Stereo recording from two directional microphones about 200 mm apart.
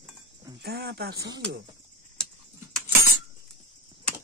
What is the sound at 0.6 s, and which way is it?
Speech, 55° right (ahead or behind).